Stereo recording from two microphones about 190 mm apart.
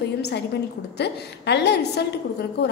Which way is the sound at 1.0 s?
60° left (ahead or behind).